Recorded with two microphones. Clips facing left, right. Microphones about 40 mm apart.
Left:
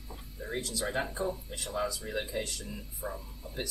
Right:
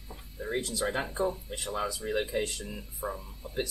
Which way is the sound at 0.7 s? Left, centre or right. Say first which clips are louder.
Right 1 dB; centre.